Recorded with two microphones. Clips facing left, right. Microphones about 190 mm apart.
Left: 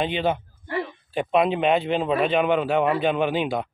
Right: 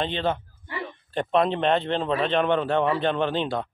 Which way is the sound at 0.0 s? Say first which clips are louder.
Left 2 dB; 10° left (ahead or behind).